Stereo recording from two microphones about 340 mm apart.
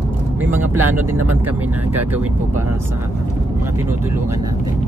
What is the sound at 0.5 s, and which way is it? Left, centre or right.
Speech, centre.